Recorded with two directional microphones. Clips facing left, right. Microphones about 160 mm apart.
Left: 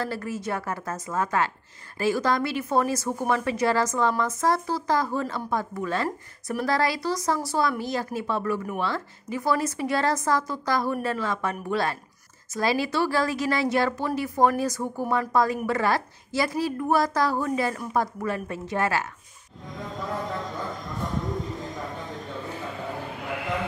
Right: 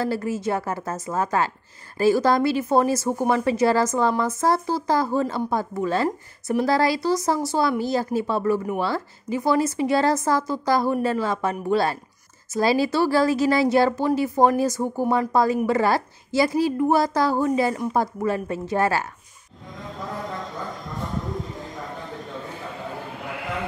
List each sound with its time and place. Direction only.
0.0 s a woman's voice: 30° right (ahead or behind)